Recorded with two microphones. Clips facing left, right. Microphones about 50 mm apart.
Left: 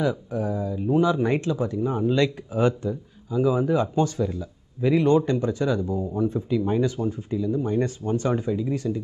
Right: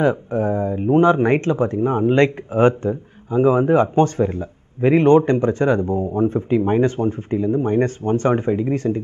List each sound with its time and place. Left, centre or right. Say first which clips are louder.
0.0 s speech: right 7 dB; right